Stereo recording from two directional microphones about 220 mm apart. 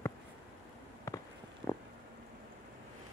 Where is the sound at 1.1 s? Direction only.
15° left (ahead or behind).